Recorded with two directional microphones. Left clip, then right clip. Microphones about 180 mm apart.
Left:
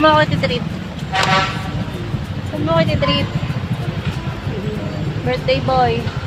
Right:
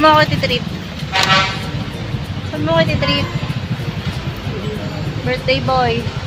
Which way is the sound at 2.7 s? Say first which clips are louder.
Right 1 dB; 25° right (ahead or behind).